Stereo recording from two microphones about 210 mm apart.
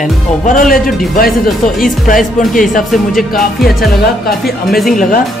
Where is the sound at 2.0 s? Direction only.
40° left (ahead or behind).